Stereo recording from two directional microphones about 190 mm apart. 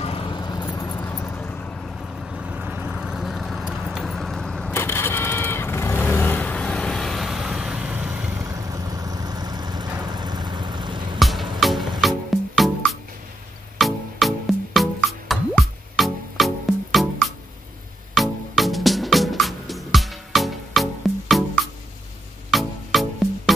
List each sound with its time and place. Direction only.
0.0 s vehicle: 25° left (ahead or behind); by 8.1 s 5° right (ahead or behind)
8.5 s vehicle: 20° right (ahead or behind)
11.1 s music: centre (ahead or behind)